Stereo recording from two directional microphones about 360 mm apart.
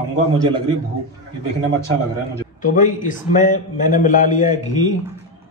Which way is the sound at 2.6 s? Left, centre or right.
Left.